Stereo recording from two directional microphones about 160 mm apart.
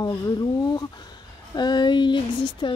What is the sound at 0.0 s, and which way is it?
Speech, 25° left (ahead or behind).